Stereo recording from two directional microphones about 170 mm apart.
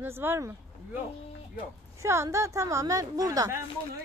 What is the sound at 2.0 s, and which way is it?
Speech, 15° right (ahead or behind).